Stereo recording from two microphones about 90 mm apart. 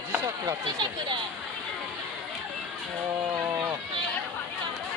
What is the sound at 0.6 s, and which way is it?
Speech, 55° right (ahead or behind).